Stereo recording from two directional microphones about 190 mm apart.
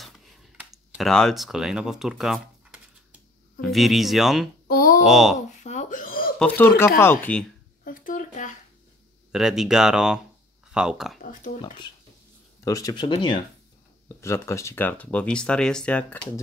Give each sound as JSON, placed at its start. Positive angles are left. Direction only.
{"t": 0.0, "sound": "a sound", "side_deg": 0}
{"t": 3.7, "sound": "speech", "side_deg": 0}
{"t": 4.6, "sound": "speech", "side_deg": 50}
{"t": 5.0, "sound": "speech", "side_deg": 0}
{"t": 5.6, "sound": "wail", "side_deg": 40}
{"t": 6.4, "sound": "speech", "side_deg": 10}
{"t": 7.8, "sound": "a sound", "side_deg": 45}
{"t": 9.3, "sound": "speech", "side_deg": -5}
{"t": 11.1, "sound": "speech", "side_deg": 45}
{"t": 12.6, "sound": "speech", "side_deg": 20}